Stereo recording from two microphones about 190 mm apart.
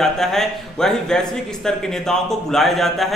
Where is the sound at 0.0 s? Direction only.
Centre (ahead or behind).